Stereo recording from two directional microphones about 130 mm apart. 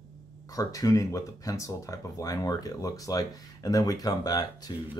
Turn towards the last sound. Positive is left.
turn(degrees=30)  # may be behind; listen again after turning